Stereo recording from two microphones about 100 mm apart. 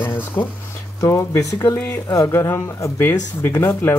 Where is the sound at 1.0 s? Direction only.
30° left (ahead or behind).